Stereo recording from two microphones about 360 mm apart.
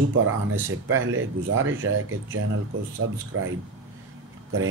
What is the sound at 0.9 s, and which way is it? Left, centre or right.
Speech, right.